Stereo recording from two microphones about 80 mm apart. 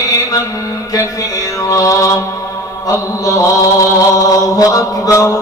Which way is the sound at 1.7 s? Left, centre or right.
Left.